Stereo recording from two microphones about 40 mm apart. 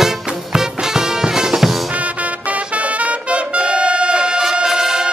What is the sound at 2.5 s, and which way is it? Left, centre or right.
Brass instrument, right.